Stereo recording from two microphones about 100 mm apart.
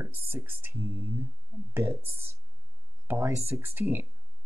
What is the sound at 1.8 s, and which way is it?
Speech, 20° right (ahead or behind).